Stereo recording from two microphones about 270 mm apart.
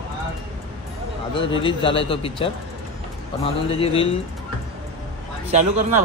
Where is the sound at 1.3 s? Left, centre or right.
Centre.